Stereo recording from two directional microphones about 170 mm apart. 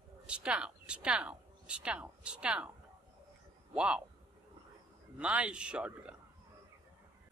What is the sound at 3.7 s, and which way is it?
Speech, 5° right (ahead or behind).